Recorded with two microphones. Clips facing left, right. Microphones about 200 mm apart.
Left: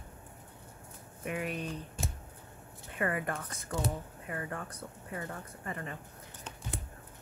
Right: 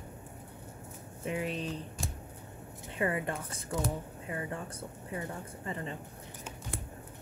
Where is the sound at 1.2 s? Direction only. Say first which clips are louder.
Right 1 dB; 25° right (ahead or behind).